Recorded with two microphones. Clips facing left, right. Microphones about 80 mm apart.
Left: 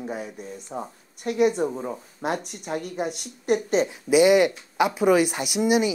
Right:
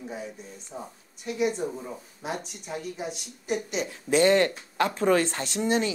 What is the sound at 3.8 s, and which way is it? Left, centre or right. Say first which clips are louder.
Speech: left 2 dB; centre.